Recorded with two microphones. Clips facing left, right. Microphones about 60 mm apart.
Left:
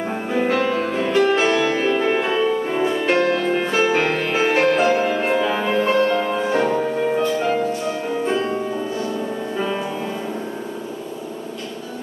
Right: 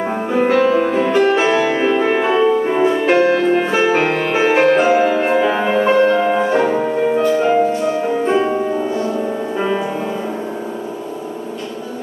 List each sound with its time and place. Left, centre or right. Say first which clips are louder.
0.5 s music: right 8 dB; centre; by 9.8 s right